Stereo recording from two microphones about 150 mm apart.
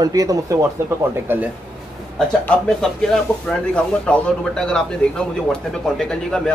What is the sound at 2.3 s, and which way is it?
Speech, 5° left (ahead or behind).